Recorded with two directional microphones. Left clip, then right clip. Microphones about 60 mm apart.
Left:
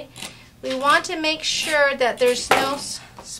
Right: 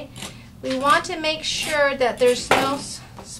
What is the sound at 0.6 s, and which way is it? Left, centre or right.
A woman's voice, left.